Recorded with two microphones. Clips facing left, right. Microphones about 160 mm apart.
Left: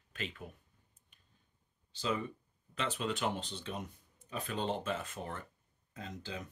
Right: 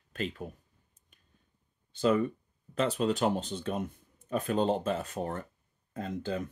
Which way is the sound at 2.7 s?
40° right (ahead or behind).